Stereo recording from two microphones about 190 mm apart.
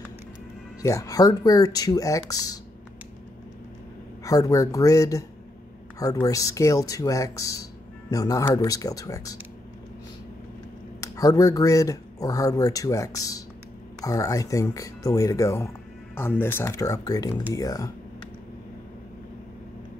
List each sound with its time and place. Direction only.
0.8 s speech: 15° left (ahead or behind)
4.2 s speech: 20° left (ahead or behind)
11.0 s speech: 20° left (ahead or behind)